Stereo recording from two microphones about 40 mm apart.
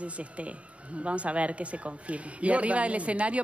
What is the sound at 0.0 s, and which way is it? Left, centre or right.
Speech, right.